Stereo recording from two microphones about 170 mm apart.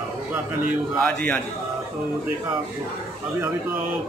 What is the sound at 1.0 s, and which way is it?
Speech, 10° left (ahead or behind).